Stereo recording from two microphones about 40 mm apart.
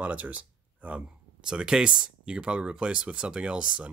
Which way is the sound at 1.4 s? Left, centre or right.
Centre.